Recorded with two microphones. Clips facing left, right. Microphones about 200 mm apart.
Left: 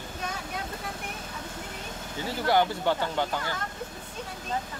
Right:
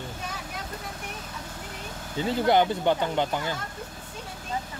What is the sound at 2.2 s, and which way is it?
Speech, 20° right (ahead or behind).